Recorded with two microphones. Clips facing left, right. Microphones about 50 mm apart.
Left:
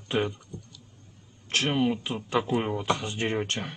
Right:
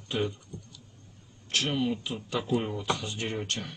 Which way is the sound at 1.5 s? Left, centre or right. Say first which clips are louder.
Left 3 dB; left.